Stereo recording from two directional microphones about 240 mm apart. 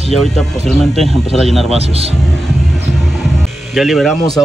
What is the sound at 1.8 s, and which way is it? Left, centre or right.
Speech, right.